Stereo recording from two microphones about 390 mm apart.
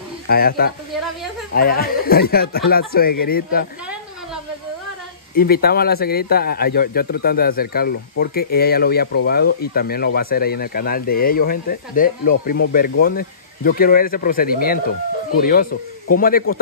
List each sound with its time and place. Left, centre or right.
0.3 s speech: left
5.3 s speech: left